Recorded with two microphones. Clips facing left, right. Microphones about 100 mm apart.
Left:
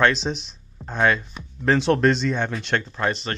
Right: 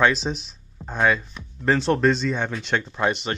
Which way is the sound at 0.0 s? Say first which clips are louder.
Even; 5° right (ahead or behind).